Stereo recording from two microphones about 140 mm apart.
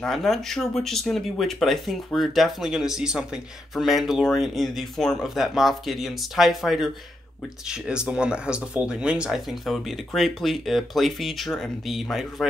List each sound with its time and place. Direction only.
0.0 s speech: centre (ahead or behind)